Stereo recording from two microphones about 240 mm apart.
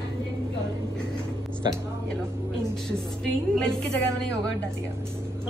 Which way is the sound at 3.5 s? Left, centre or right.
Centre.